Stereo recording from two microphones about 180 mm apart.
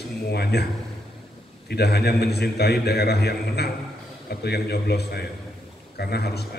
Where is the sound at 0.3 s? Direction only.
65° left (ahead or behind).